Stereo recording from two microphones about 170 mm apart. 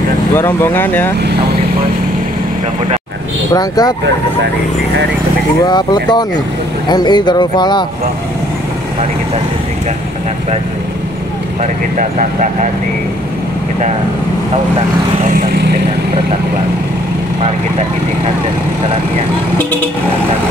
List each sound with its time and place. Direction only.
0.4 s speech: 15° left (ahead or behind)
3.5 s speech: 20° left (ahead or behind)
5.7 s speech: 25° left (ahead or behind)
11.6 s speech: 45° right (ahead or behind)